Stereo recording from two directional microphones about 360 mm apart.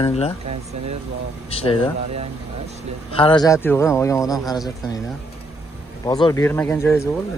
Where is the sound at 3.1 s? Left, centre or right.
Centre.